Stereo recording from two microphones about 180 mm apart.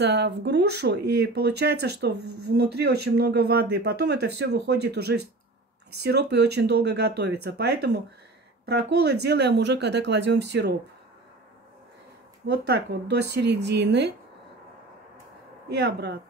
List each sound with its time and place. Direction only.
0.0 s speech: 75° right (ahead or behind)
12.4 s speech: 65° right (ahead or behind)
15.7 s speech: 70° right (ahead or behind)